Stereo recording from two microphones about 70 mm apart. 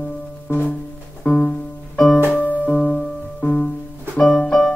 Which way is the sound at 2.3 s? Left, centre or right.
Left.